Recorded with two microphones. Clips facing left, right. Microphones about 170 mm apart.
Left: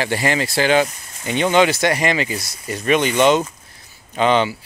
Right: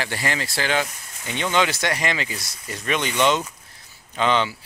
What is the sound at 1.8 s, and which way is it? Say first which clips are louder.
Speech: left 6 dB; 10° left (ahead or behind).